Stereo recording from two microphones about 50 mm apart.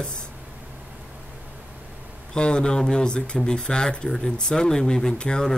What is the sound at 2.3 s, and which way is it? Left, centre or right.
Speech, centre.